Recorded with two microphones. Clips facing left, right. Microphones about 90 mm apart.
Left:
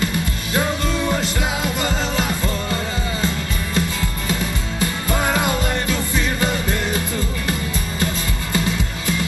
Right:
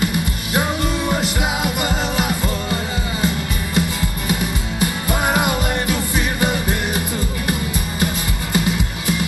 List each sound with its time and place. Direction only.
0.0 s music: 20° right (ahead or behind)
8.5 s music: 20° right (ahead or behind)